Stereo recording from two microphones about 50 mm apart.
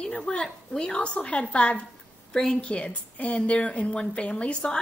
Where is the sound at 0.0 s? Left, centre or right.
Centre.